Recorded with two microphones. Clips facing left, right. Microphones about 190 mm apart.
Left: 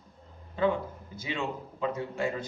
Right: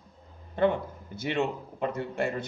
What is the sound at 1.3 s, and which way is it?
Speech, 55° right (ahead or behind).